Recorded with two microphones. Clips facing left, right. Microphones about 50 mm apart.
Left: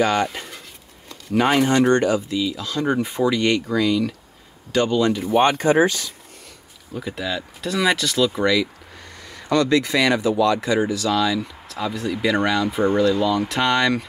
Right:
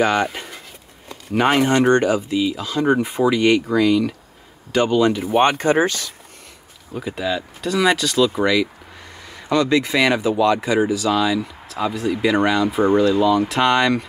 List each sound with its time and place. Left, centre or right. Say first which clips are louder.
0.0 s speech: right 1 dB; right
0.3 s pigeon: right 1 dB; centre
1.7 s speech: right 1 dB; right
5.4 s speech: even; right
6.9 s speech: right 3 dB; centre